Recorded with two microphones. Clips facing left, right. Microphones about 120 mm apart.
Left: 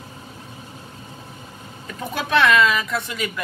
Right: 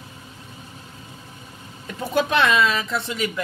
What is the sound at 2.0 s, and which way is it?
A woman's voice, 25° right (ahead or behind).